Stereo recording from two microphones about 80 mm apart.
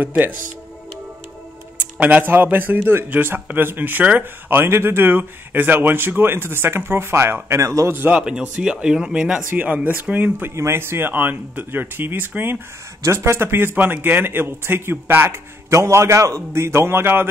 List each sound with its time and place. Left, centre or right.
1.8 s speech: centre; by 7.9 s right
7.9 s speech: right
8.2 s speech: centre
9.5 s speech: right
10.5 s speech: right